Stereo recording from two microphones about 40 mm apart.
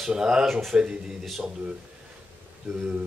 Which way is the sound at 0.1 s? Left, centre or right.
Centre.